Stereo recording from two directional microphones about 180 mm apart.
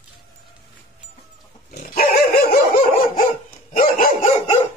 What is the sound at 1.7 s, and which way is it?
Dog, 55° left (ahead or behind).